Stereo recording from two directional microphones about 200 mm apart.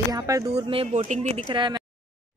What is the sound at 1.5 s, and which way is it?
Speech, 25° right (ahead or behind).